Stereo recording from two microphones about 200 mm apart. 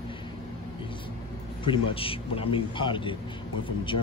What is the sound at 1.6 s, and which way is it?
A man's voice, 25° left (ahead or behind).